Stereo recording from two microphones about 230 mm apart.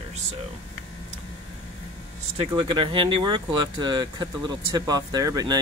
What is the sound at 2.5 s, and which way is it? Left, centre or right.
Speech, right.